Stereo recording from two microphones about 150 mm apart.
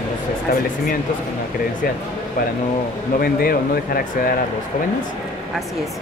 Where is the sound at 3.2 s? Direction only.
80° left.